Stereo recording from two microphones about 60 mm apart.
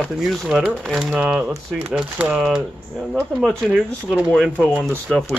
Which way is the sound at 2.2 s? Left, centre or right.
Right.